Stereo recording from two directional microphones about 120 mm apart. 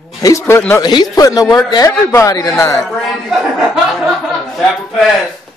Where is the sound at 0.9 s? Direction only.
35° left (ahead or behind).